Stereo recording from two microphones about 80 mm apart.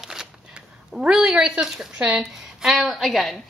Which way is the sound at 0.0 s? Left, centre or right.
Centre.